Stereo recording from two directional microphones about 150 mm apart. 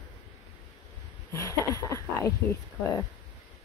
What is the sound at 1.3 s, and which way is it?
Speech, 20° left (ahead or behind).